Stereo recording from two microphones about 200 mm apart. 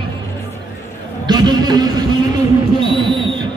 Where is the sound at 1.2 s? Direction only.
20° right (ahead or behind).